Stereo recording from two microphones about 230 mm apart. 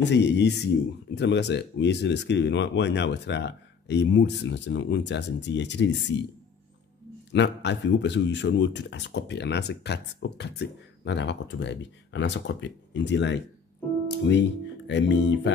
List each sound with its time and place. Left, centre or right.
0.1 s speech: left
7.3 s speech: left
14.0 s music: left
14.9 s speech: left